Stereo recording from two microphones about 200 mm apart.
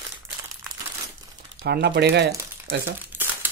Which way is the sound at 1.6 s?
55° right (ahead or behind).